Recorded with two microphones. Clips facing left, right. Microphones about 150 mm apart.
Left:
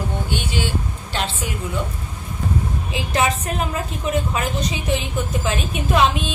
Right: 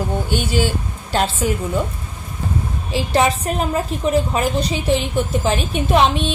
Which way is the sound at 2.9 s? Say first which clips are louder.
Right 4 dB; 35° right (ahead or behind).